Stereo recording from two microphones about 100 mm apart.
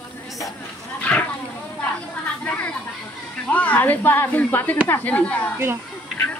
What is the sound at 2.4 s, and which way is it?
Speech, 15° left (ahead or behind).